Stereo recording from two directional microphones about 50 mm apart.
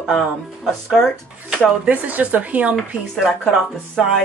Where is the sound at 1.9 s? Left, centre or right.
Right.